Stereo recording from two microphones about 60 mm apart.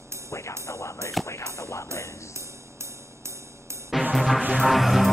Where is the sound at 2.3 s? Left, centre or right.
Right.